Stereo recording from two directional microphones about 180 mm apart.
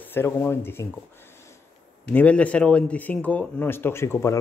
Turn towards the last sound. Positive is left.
turn(degrees=15)  # may be behind; listen again after turning